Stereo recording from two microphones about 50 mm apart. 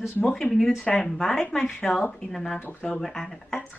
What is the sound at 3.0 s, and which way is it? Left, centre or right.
Speech, centre.